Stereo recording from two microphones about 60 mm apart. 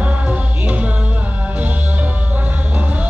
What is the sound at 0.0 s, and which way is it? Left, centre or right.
Music, right.